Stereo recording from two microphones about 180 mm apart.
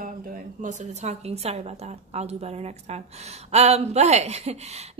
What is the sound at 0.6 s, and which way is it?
A woman's voice, 45° right (ahead or behind).